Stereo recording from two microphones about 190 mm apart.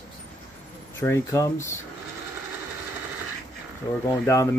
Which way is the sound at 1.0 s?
15° left (ahead or behind).